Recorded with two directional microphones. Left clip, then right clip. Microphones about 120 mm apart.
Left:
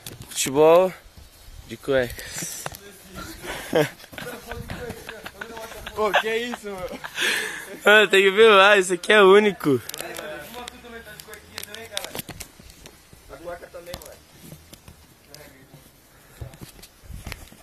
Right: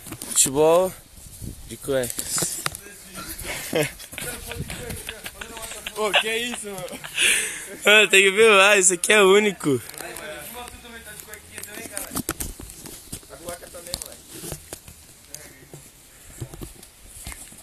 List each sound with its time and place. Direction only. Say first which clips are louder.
0.4 s speech: left 2 dB; centre (ahead or behind)
3.4 s dog: left 2 dB; 20° left (ahead or behind)
4.1 s a sound: right 1 dB; centre (ahead or behind)
4.7 s run: even; 5° right (ahead or behind)
6.2 s speech: even; 40° right (ahead or behind)
6.6 s speech: left 1 dB; 50° right (ahead or behind)
7.0 s speech: right 3 dB; 10° left (ahead or behind)
7.8 s speech: even; centre (ahead or behind)
13.3 s a sound: left 2 dB; 5° right (ahead or behind)